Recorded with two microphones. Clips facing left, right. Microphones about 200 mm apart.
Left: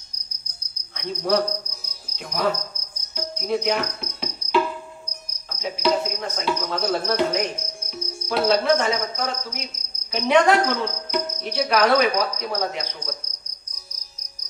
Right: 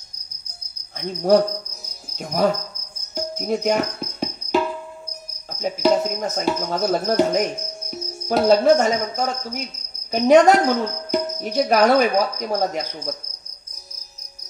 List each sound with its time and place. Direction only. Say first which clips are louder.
0.9 s speech: right 6 dB; 45° right (ahead or behind)
2.1 s cricket: right 4 dB; 45° right (ahead or behind)
5.5 s speech: right 4 dB; 45° right (ahead or behind)